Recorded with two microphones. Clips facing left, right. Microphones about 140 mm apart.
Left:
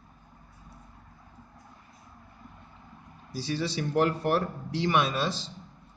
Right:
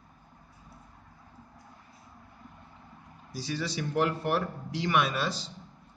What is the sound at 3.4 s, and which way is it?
A man's voice, 30° left (ahead or behind).